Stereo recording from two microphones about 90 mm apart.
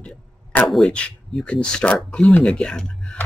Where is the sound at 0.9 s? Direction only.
10° left (ahead or behind).